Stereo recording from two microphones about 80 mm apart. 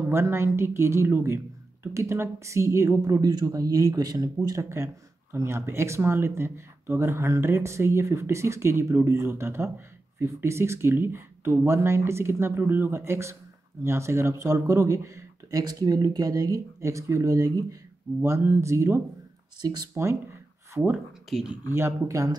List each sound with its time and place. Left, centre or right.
0.1 s speech: right
3.0 s speech: right
4.6 s speech: right
18.2 s speech: right
19.6 s speech: right
19.9 s speech: right
21.3 s speech: centre
21.7 s speech: right
22.1 s speech: right